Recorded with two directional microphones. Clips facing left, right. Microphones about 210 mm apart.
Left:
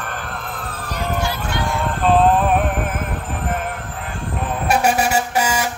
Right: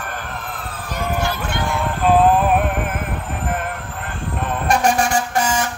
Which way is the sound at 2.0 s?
5° right (ahead or behind).